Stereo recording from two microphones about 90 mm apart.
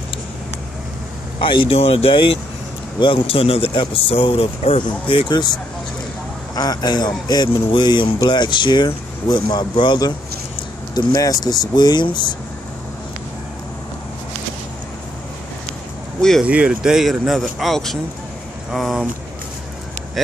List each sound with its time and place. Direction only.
1.4 s speech: 70° left (ahead or behind); by 10.1 s 55° left (ahead or behind)
11.1 s speech: 40° left (ahead or behind)
11.7 s speech: 55° left (ahead or behind)
16.2 s speech: 5° left (ahead or behind)
16.4 s speech: 15° right (ahead or behind)